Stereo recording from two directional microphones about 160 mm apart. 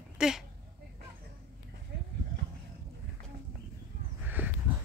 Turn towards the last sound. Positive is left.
turn(degrees=-10)  # may be behind; listen again after turning